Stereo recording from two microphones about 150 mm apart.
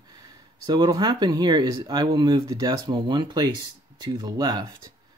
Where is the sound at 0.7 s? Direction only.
30° right (ahead or behind).